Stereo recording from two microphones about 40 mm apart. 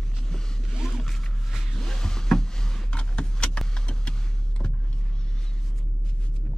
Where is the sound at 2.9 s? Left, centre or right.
Left.